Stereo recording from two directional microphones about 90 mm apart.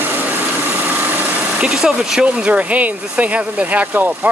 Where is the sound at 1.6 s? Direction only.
5° right (ahead or behind).